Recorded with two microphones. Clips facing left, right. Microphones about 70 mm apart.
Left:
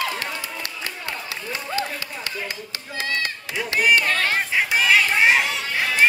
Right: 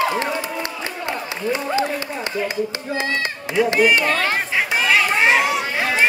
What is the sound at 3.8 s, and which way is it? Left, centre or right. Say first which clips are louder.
Speech: right 2 dB; right.